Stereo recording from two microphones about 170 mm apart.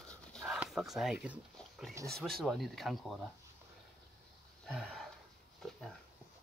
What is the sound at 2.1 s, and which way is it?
Speech, centre (ahead or behind).